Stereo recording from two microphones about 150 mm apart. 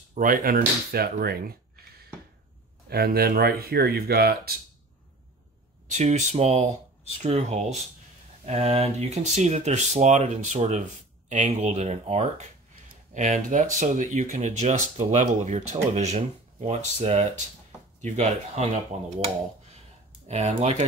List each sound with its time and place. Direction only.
0.1 s speech: 65° right (ahead or behind); by 1.6 s 90° right
2.9 s speech: 90° right
5.9 s speech: 50° right (ahead or behind)
20.2 s speech: 45° right (ahead or behind)